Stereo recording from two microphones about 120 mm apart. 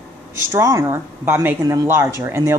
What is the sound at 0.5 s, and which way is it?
Speech, 25° right (ahead or behind).